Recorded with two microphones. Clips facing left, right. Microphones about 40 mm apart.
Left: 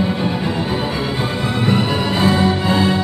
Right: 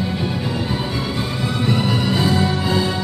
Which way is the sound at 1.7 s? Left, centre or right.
Centre.